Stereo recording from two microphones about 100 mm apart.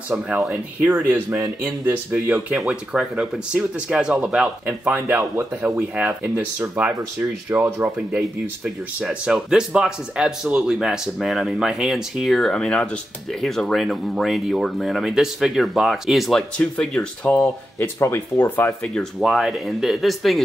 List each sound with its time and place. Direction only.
0.1 s speech: 10° right (ahead or behind); by 17.5 s 10° left (ahead or behind)
17.9 s speech: 30° left (ahead or behind)
18.9 s speech: centre (ahead or behind)